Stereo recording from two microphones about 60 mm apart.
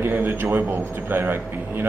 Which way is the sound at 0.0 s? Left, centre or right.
Right.